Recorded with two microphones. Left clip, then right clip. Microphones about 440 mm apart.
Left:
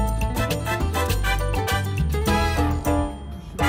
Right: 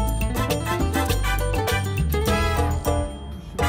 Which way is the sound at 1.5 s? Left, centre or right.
Right.